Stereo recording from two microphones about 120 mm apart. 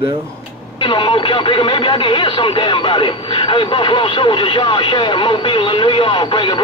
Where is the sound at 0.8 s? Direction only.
45° left (ahead or behind).